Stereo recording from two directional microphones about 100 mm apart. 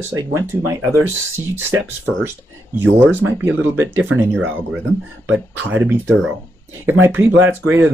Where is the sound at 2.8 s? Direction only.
20° right (ahead or behind).